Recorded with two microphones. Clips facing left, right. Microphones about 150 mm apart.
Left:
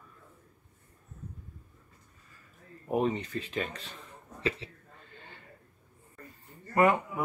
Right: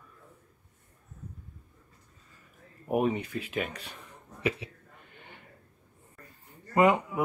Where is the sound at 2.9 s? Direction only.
10° right (ahead or behind).